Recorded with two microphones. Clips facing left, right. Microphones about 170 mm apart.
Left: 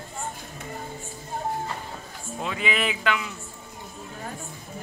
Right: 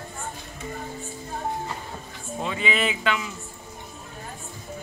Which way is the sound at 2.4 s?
Centre (ahead or behind).